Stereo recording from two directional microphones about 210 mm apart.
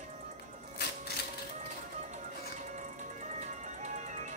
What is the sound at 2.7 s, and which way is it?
Music, 35° right (ahead or behind).